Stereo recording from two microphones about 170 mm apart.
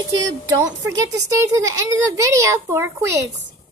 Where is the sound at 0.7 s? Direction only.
20° right (ahead or behind).